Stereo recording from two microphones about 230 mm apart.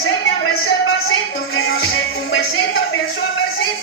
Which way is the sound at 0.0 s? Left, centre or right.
Left.